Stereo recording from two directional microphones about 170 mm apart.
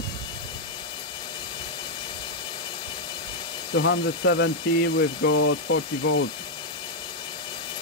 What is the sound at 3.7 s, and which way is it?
Speech, 90° left.